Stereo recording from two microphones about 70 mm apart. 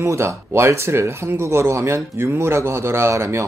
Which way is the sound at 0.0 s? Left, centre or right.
Right.